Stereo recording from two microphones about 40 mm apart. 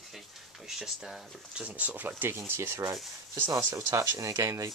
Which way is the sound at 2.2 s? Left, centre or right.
Right.